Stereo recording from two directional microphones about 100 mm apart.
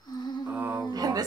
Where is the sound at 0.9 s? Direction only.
40° right (ahead or behind).